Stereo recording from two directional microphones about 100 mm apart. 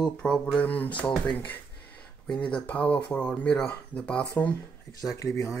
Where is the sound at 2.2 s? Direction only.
10° left (ahead or behind).